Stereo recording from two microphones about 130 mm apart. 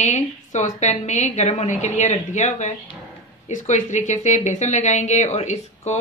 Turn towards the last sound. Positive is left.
turn(degrees=60)  # may be behind; listen again after turning